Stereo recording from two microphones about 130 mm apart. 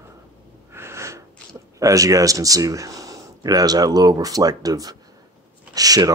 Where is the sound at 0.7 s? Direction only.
20° right (ahead or behind).